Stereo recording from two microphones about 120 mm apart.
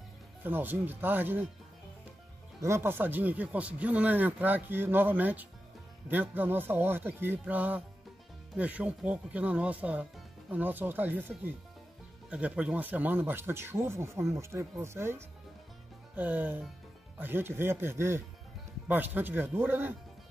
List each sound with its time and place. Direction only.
0.4 s speech: 15° right (ahead or behind)
2.6 s speech: 20° right (ahead or behind)